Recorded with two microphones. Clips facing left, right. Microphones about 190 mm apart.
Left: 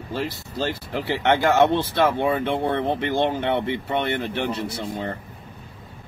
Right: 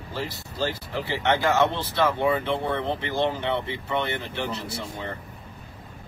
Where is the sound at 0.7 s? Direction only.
55° left (ahead or behind).